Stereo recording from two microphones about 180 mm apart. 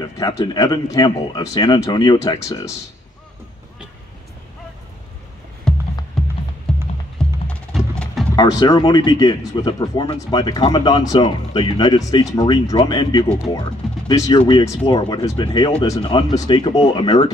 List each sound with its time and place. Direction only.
0.0 s speech: 20° left (ahead or behind)
5.7 s music: 5° left (ahead or behind)
8.4 s speech: 25° left (ahead or behind)